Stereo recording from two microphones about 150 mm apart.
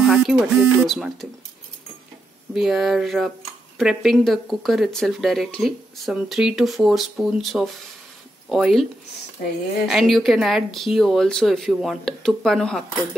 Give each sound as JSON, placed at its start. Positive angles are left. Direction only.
{"t": 0.0, "sound": "a sound", "side_deg": 0}
{"t": 0.8, "sound": "speech", "side_deg": 0}
{"t": 2.5, "sound": "speech", "side_deg": 0}
{"t": 9.4, "sound": "a woman's voice", "side_deg": 65}
{"t": 9.8, "sound": "speech", "side_deg": 0}